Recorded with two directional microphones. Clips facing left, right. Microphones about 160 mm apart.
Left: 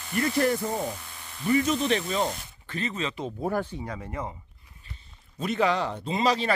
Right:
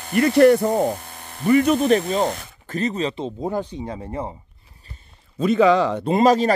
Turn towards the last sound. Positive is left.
turn(degrees=-45)  # may be behind; listen again after turning